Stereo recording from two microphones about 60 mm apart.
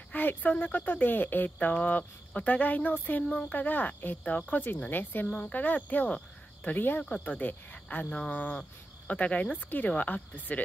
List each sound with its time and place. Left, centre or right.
0.1 s speech: left